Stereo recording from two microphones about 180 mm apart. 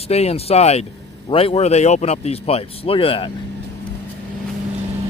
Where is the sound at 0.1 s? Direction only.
35° left (ahead or behind).